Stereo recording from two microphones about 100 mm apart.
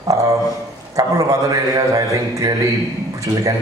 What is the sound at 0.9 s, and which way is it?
A man's voice, 35° right (ahead or behind).